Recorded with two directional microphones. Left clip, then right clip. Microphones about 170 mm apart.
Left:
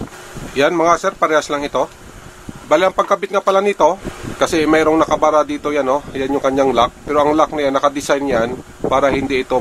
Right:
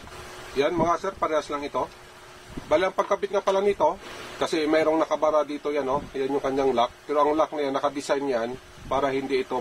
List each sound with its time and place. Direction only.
0.6 s a man's voice: 40° left (ahead or behind)